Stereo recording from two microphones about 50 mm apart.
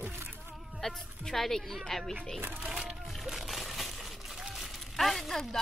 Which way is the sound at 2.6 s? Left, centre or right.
Centre.